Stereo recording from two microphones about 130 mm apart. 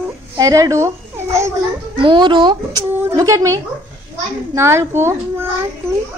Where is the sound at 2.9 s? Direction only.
25° right (ahead or behind).